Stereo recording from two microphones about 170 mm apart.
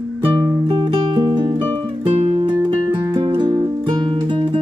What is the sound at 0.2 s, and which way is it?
Music, 25° right (ahead or behind).